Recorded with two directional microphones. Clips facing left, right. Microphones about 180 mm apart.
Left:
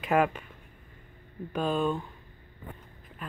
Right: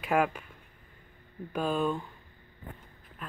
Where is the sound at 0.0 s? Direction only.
10° right (ahead or behind).